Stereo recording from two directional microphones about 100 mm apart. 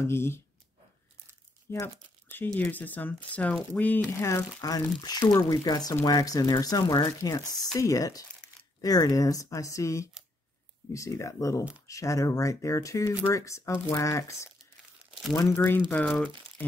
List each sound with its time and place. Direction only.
0.0 s speech: 25° left (ahead or behind)
1.7 s speech: 25° left (ahead or behind)
4.1 s speech: 25° left (ahead or behind)
4.6 s speech: 40° left (ahead or behind)